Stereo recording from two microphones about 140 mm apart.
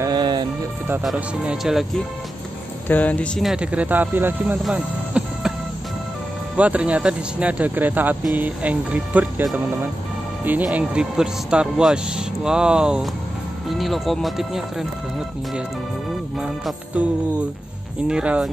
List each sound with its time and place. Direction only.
0.0 s music: 30° right (ahead or behind)
1.0 s speech: 5° right (ahead or behind)
2.9 s speech: 10° left (ahead or behind); by 4.6 s 15° right (ahead or behind)
4.6 s music: 5° right (ahead or behind)
6.5 s speech: 10° right (ahead or behind)
16.3 s music: 5° right (ahead or behind)
18.0 s speech: 5° right (ahead or behind)